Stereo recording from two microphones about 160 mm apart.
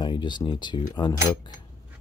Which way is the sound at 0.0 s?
30° left (ahead or behind).